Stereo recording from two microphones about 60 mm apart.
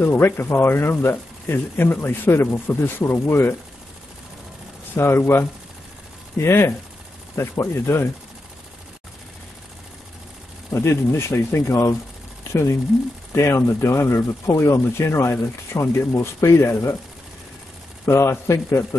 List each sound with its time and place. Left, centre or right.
0.0 s speech: left
4.9 s speech: left
10.7 s speech: left
13.3 s speech: left
18.0 s speech: left